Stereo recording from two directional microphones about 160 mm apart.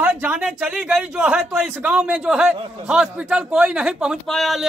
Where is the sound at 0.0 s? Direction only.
10° right (ahead or behind).